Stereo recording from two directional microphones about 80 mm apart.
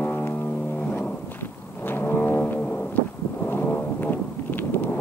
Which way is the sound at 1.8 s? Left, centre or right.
Left.